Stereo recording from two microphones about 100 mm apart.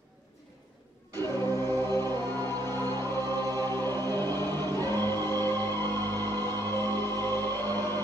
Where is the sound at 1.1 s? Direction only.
25° left (ahead or behind).